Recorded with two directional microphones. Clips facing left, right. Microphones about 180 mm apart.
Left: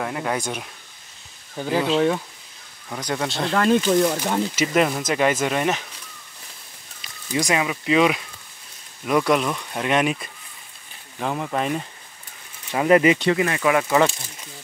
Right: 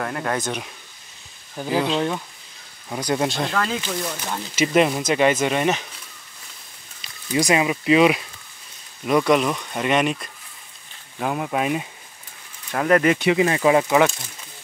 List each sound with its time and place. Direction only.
0.0 s speech: 10° left (ahead or behind)
1.6 s speech: 5° right (ahead or behind)
2.9 s speech: 10° right (ahead or behind)
3.6 s speech: 55° left (ahead or behind)
4.6 s speech: 5° right (ahead or behind)
7.3 s speech: 10° right (ahead or behind)
12.7 s speech: 5° left (ahead or behind)
13.4 s speech: 25° right (ahead or behind)